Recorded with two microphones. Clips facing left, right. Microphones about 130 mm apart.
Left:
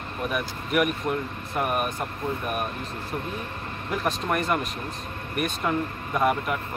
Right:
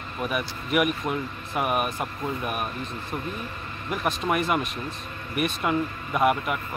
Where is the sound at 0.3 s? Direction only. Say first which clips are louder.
Even; 5° right (ahead or behind).